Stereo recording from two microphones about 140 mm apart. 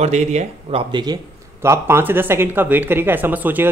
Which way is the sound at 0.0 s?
50° right (ahead or behind).